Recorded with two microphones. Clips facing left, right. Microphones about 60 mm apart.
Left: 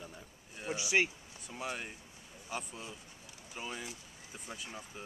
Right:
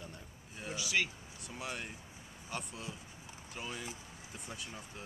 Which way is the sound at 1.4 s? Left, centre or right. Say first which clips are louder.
Left 2 dB; centre.